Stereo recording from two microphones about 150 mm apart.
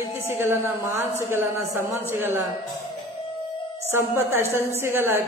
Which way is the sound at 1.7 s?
15° right (ahead or behind).